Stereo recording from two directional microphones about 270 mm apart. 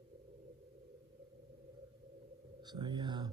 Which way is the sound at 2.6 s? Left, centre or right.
Centre.